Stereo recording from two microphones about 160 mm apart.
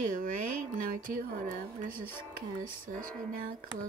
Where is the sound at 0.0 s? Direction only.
55° right (ahead or behind).